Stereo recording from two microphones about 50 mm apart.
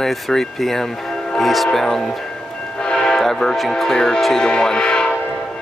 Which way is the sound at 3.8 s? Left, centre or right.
Centre.